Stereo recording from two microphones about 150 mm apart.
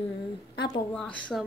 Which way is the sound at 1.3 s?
5° left (ahead or behind).